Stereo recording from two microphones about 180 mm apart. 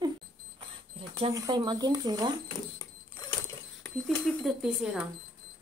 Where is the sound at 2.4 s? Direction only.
20° left (ahead or behind).